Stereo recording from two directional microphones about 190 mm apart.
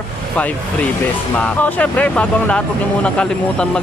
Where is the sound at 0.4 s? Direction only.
10° left (ahead or behind).